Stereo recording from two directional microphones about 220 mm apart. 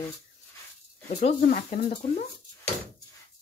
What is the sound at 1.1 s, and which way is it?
Speech, 30° left (ahead or behind).